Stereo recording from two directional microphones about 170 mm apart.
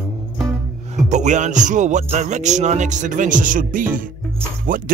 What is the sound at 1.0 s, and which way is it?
Speech, 45° right (ahead or behind).